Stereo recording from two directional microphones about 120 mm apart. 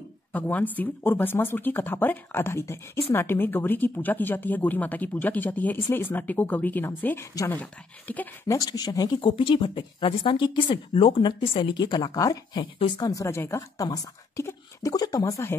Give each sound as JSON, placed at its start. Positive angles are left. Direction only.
{"t": 0.3, "sound": "speech", "side_deg": 15}
{"t": 8.5, "sound": "speech", "side_deg": 30}
{"t": 9.2, "sound": "a woman's voice", "side_deg": 45}